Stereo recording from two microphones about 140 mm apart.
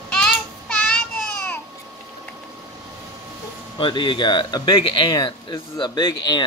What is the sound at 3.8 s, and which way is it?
Speech, 35° left (ahead or behind).